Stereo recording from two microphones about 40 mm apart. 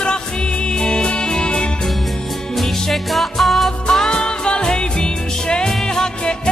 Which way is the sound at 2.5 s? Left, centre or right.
Centre.